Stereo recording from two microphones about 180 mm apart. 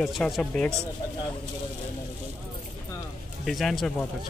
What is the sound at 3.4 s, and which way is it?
Speech, centre (ahead or behind).